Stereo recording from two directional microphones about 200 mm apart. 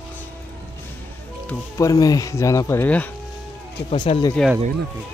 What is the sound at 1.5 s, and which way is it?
Speech, 15° left (ahead or behind).